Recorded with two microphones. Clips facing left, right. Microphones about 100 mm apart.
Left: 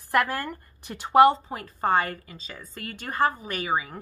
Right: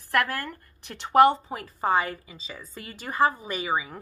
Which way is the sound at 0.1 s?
15° left (ahead or behind).